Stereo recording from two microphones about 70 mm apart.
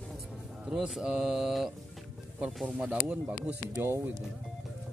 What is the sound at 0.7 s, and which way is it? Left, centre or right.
Mantra, centre.